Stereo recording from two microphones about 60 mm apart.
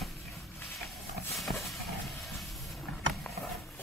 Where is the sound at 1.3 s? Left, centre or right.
Centre.